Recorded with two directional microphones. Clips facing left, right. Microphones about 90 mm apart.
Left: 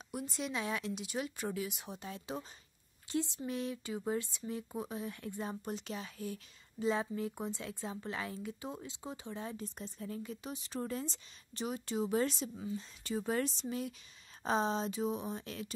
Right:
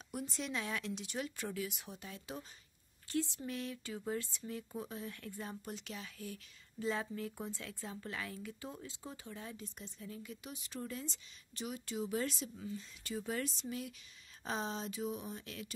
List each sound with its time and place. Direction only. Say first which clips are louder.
0.1 s speech: left 2 dB; 5° left (ahead or behind); by 9.7 s 30° left (ahead or behind)
9.8 s a woman's voice: left 6 dB; 45° left (ahead or behind)